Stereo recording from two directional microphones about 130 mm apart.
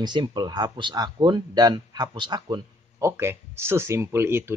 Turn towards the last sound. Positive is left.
turn(degrees=-20)  # may be behind; listen again after turning